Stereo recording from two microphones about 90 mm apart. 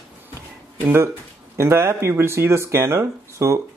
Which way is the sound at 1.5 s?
30° right (ahead or behind).